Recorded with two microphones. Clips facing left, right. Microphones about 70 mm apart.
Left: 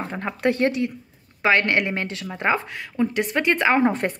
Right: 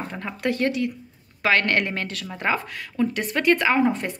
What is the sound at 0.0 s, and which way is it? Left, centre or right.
Speech, left.